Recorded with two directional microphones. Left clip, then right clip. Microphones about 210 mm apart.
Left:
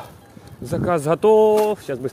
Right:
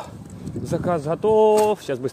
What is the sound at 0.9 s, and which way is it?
Speech, 25° left (ahead or behind).